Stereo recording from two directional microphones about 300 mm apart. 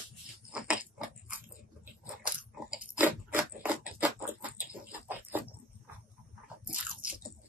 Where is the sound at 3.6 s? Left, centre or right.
Centre.